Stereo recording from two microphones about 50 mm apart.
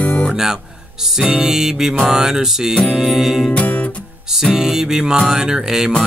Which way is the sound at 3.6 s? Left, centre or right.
Left.